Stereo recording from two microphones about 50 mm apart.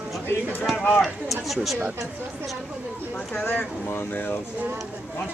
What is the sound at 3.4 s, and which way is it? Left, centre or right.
Speech, left.